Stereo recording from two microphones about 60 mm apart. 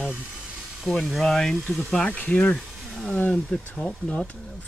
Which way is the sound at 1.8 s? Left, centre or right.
Centre.